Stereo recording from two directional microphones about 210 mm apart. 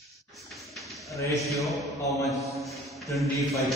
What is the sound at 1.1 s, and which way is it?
Speech, 15° left (ahead or behind).